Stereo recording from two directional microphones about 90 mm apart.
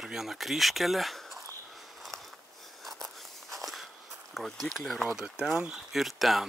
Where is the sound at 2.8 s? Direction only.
Centre (ahead or behind).